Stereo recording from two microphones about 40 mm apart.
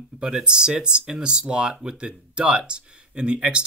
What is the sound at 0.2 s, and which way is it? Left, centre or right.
Speech, centre.